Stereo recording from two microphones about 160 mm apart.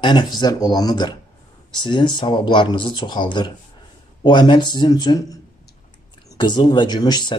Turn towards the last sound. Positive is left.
turn(degrees=25)  # may be behind; listen again after turning